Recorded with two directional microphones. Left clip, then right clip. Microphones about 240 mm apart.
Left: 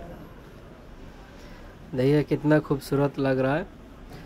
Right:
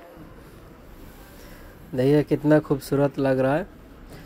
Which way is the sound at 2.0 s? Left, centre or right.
Centre.